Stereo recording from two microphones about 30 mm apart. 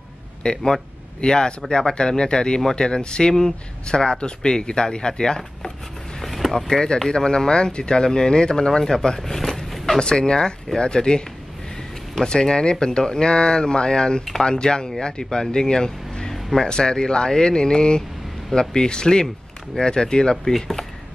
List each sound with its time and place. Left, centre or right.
0.4 s speech: left
6.2 s vehicle: centre
6.7 s speech: centre
7.1 s speech: left
9.3 s vehicle: centre
9.9 s speech: left
12.3 s speech: left
20.5 s speech: centre